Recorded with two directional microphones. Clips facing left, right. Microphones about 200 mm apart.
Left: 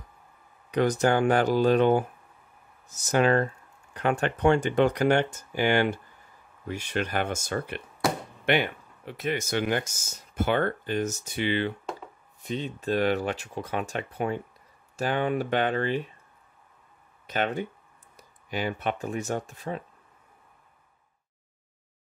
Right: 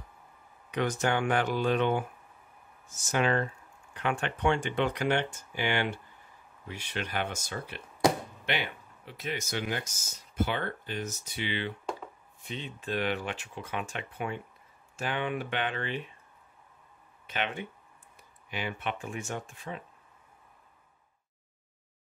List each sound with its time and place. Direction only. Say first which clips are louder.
0.7 s speech: left 6 dB; 35° left (ahead or behind); by 9.8 s 60° left (ahead or behind)
10.3 s speech: left 6 dB; 50° left (ahead or behind)
17.3 s speech: left 6 dB; 40° left (ahead or behind)